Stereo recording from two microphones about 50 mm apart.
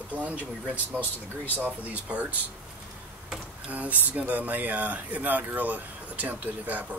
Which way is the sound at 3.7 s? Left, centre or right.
Right.